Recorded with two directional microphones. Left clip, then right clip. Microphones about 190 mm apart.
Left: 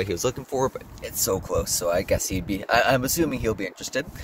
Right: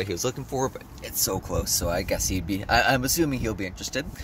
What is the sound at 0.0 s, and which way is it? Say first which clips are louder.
Speech: left 3 dB; 10° left (ahead or behind).